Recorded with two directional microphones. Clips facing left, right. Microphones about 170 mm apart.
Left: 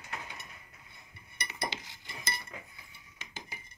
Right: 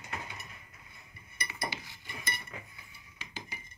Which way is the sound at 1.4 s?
80° left.